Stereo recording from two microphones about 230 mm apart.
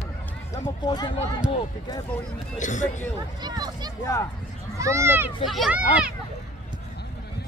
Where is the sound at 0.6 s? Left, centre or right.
Centre.